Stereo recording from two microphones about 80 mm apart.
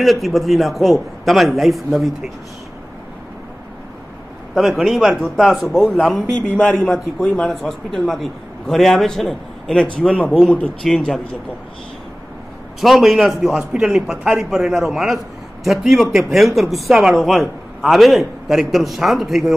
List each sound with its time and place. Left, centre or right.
0.0 s a man's voice: centre
4.6 s a man's voice: centre
6.9 s a man's voice: centre
12.8 s a man's voice: centre